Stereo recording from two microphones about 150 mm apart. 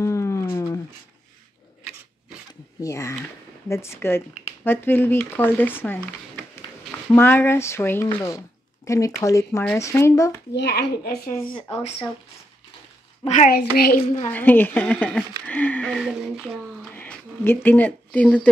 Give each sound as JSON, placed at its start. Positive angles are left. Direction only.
{"t": 0.0, "sound": "a sound", "side_deg": 20}
{"t": 2.8, "sound": "speech", "side_deg": 20}
{"t": 7.2, "sound": "speech", "side_deg": 15}
{"t": 10.6, "sound": "a child's voice", "side_deg": 90}
{"t": 11.3, "sound": "speech", "side_deg": 10}
{"t": 13.5, "sound": "a child's voice", "side_deg": 85}
{"t": 14.3, "sound": "speech", "side_deg": 10}
{"t": 16.0, "sound": "speech", "side_deg": -5}
{"t": 16.9, "sound": "speech", "side_deg": 10}